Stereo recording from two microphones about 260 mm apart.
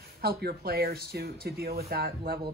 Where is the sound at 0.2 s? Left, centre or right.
Right.